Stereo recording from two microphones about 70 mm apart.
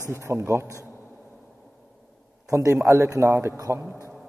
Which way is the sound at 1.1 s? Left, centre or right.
Centre.